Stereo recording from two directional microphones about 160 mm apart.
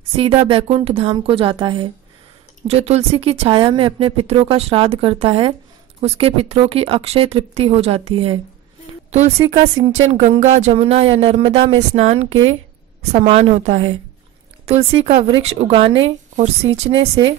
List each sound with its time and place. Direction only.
0.1 s a woman's voice: 35° right (ahead or behind)